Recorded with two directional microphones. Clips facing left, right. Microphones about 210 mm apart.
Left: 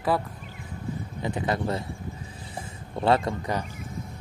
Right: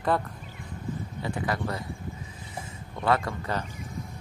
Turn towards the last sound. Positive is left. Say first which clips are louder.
# left 3 dB
turn(degrees=25)  # may be behind; listen again after turning